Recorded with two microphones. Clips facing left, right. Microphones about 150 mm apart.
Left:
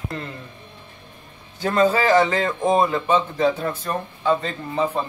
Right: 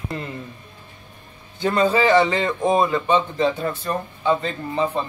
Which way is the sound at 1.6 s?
Centre (ahead or behind).